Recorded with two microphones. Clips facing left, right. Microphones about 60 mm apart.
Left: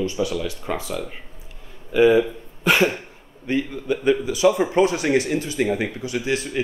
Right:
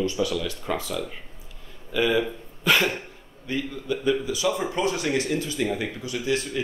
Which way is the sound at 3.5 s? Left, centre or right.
Left.